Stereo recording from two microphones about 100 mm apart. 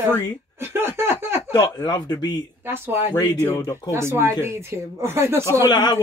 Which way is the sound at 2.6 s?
25° right (ahead or behind).